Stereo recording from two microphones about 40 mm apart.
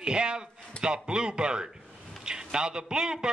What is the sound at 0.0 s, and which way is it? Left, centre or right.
A man's voice, right.